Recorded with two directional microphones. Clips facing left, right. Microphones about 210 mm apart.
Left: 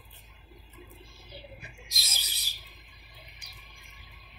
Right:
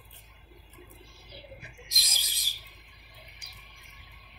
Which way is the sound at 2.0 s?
15° right (ahead or behind).